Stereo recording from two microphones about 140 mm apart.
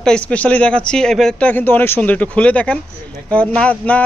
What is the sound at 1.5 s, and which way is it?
A man's voice, 15° left (ahead or behind).